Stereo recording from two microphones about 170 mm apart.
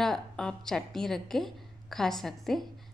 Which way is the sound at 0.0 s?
5° left (ahead or behind).